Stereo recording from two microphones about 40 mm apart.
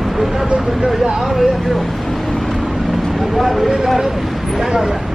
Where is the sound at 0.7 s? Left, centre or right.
Centre.